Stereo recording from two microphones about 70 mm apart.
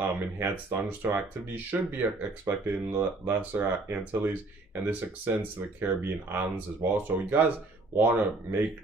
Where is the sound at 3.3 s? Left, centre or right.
Right.